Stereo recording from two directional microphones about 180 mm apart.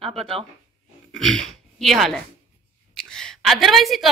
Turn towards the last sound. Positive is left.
turn(degrees=0)  # may be behind; listen again after turning